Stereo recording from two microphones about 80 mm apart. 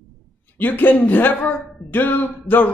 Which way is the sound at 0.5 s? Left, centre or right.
Left.